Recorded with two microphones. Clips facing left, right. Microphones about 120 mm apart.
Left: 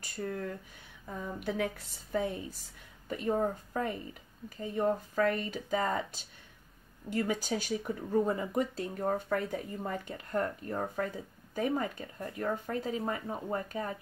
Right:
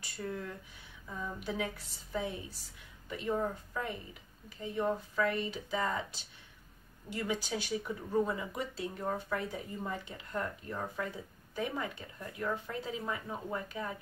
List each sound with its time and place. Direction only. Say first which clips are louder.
0.0 s speech: left 3 dB; 50° left (ahead or behind)